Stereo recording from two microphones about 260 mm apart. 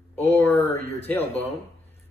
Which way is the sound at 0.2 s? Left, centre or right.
Centre.